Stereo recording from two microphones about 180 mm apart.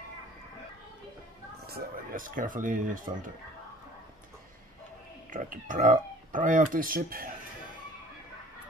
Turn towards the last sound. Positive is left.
turn(degrees=-55)  # may be behind; listen again after turning